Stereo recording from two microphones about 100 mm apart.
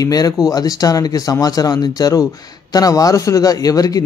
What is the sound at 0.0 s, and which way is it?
Speech, 40° left (ahead or behind).